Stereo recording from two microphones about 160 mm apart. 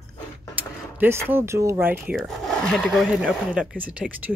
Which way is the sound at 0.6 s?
10° right (ahead or behind).